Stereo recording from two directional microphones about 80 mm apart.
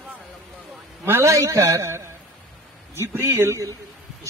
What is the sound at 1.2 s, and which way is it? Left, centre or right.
A man's voice, right.